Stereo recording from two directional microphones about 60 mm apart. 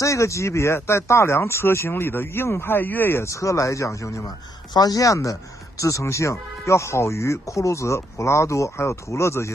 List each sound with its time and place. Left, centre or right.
0.0 s speech: left
3.3 s speech: left
4.7 s speech: left